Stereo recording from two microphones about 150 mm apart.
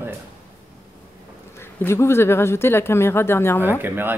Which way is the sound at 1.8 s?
15° left (ahead or behind).